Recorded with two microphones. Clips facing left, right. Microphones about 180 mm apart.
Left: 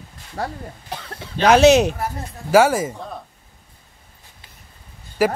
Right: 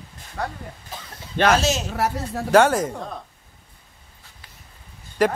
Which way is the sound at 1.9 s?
80° right.